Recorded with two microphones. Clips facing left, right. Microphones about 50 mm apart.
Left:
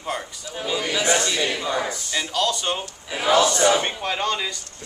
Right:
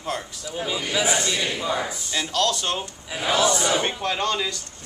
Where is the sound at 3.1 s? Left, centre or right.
Left.